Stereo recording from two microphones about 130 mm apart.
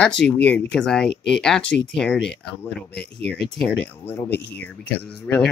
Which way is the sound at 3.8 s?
15° left (ahead or behind).